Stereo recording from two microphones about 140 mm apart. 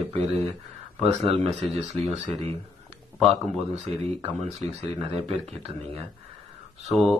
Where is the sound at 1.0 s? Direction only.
45° right (ahead or behind).